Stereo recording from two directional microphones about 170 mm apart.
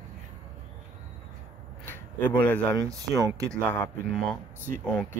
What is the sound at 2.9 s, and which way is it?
Speech, 20° right (ahead or behind).